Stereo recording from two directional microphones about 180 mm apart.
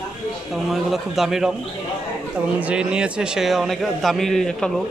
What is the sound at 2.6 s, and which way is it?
A man's voice, 5° right (ahead or behind).